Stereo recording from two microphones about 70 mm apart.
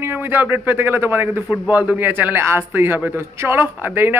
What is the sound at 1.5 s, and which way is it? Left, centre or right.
A man's voice, centre.